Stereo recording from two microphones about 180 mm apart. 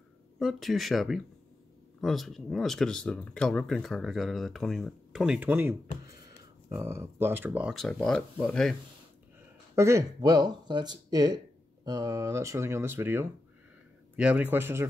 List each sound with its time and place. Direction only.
0.4 s speech: centre (ahead or behind)
7.7 s speech: centre (ahead or behind)
9.8 s speech: 15° right (ahead or behind)